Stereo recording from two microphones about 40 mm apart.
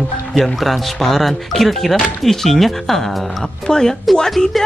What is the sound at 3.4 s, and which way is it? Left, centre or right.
Speech, centre.